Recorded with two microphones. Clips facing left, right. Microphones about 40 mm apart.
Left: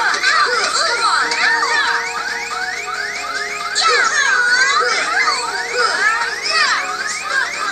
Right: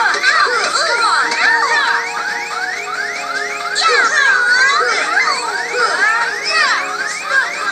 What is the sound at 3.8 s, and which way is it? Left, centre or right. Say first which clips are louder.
Music: right 2 dB; right.